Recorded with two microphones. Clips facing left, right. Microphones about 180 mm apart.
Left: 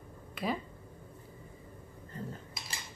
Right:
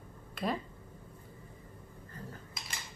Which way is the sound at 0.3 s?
Centre (ahead or behind).